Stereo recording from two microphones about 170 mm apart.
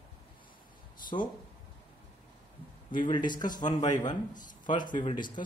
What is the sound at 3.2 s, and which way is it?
Speech, 50° left (ahead or behind).